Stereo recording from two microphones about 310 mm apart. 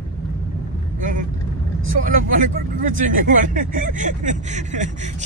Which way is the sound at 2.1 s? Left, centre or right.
Right.